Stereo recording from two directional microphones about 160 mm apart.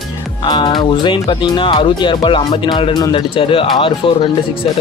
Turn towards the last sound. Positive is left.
turn(degrees=30)  # may be behind; listen again after turning